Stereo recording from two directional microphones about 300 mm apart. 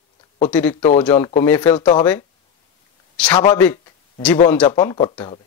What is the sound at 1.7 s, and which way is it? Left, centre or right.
Speech, centre.